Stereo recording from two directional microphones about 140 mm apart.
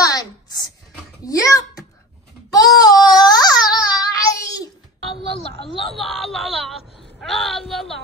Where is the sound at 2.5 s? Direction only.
25° left (ahead or behind).